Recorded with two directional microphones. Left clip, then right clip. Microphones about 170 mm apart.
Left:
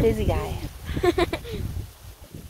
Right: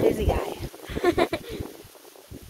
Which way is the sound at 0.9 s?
25° right (ahead or behind).